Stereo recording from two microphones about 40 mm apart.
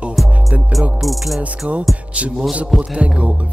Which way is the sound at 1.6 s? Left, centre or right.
Right.